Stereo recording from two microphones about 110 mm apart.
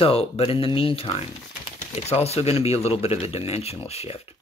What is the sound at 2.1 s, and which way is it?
Speech, 70° left (ahead or behind).